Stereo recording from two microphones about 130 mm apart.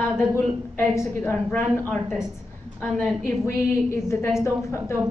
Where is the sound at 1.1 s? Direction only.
15° left (ahead or behind).